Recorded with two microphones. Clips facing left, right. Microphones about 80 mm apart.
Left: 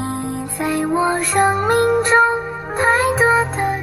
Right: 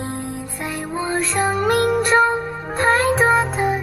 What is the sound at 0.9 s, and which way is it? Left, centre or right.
Music, left.